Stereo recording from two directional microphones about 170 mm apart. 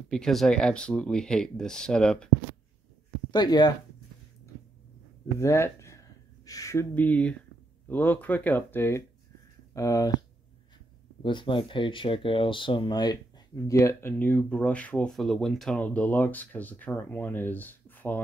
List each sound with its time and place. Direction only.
0.1 s speech: centre (ahead or behind)
3.3 s speech: 25° left (ahead or behind)
5.4 s speech: 15° left (ahead or behind)
11.2 s speech: 30° left (ahead or behind); by 18.2 s 10° left (ahead or behind)